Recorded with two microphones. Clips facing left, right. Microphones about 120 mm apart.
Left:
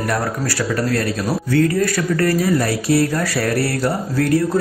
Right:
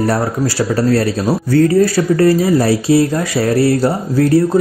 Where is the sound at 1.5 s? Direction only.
30° right (ahead or behind).